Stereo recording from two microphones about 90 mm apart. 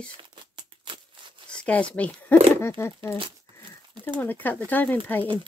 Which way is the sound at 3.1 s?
70° right (ahead or behind).